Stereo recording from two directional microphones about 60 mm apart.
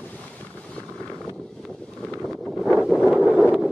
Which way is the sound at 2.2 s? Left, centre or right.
Centre.